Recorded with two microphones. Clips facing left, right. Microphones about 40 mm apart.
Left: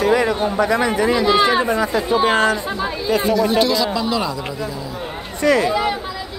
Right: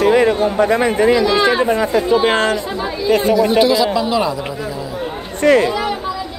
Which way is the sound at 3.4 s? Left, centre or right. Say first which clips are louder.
Right 4 dB; centre.